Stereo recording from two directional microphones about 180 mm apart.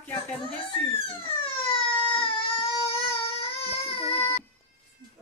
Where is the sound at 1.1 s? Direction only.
30° left (ahead or behind).